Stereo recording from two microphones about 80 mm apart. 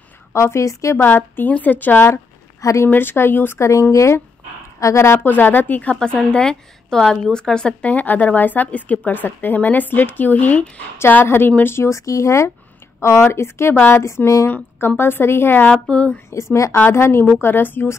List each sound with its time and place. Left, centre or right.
0.3 s speech: left
1.0 s a woman's voice: left
2.6 s speech: left
2.9 s a woman's voice: left
14.5 s a woman's voice: left
15.7 s speech: centre
16.7 s a woman's voice: left